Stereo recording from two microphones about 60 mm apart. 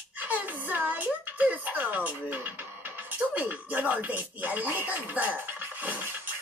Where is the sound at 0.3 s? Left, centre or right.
Right.